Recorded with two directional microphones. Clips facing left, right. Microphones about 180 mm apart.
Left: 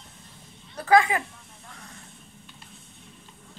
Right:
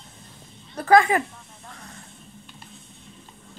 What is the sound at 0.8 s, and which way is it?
Speech, 45° right (ahead or behind).